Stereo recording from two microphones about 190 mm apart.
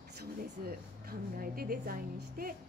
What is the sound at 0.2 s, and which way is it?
A woman's voice, 50° right (ahead or behind).